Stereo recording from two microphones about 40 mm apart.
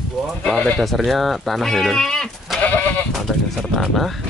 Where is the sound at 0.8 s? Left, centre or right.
Centre.